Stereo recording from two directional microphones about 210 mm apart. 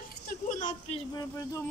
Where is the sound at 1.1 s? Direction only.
15° left (ahead or behind).